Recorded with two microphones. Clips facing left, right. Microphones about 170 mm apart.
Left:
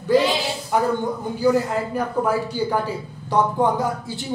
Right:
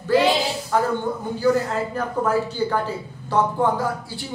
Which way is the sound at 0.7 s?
15° left (ahead or behind).